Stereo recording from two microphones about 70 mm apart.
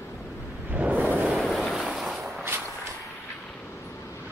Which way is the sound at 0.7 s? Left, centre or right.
Right.